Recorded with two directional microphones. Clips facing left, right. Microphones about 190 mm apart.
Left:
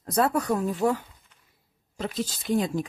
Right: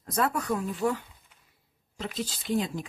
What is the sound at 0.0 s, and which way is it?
Speech, 35° left (ahead or behind).